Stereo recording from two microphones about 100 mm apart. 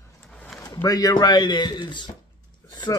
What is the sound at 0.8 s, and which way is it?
A man's voice, 40° left (ahead or behind).